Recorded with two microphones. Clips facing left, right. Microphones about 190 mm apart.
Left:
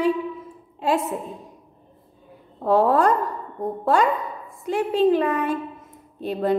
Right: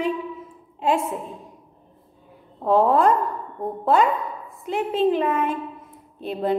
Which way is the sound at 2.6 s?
40° left (ahead or behind).